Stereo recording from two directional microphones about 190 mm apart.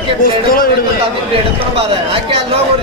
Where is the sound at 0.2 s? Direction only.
50° left (ahead or behind).